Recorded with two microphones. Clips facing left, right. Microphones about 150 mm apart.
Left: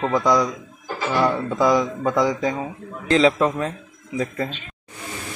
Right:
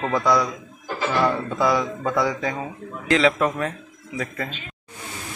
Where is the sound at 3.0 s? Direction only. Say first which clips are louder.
Left 2 dB; 30° left (ahead or behind).